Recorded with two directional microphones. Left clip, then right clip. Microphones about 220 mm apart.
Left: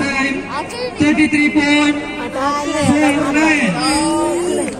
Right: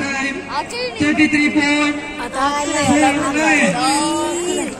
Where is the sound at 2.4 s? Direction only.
35° right (ahead or behind).